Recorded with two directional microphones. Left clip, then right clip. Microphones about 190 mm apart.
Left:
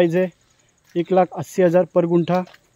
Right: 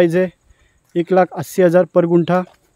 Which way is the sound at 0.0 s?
25° right (ahead or behind).